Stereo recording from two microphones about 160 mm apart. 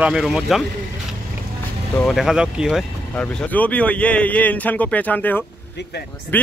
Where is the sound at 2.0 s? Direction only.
Centre (ahead or behind).